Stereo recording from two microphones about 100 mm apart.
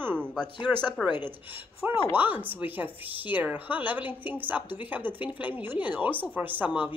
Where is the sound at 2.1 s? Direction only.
15° right (ahead or behind).